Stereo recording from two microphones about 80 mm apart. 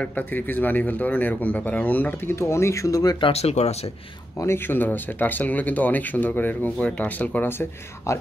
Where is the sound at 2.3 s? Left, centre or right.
Left.